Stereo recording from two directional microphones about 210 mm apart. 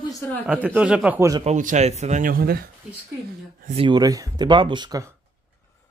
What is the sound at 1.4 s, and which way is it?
Speech, 35° right (ahead or behind).